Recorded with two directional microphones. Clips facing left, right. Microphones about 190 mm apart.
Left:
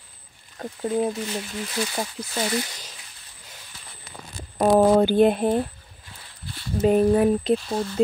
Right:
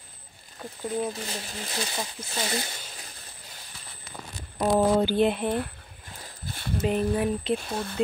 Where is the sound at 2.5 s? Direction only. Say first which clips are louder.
Left 4 dB; 35° right (ahead or behind).